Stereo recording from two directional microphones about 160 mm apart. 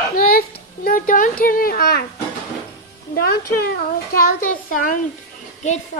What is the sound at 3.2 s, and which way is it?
Speech, 75° left (ahead or behind).